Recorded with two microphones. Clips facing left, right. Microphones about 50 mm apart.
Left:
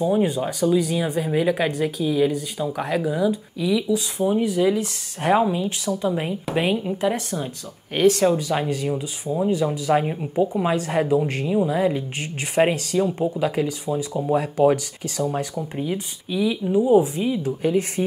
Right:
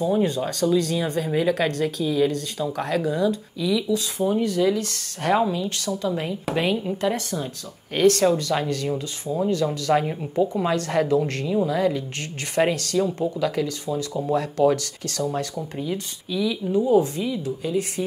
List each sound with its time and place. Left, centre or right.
0.0 s speech: centre
6.5 s speech: centre
15.8 s speech: left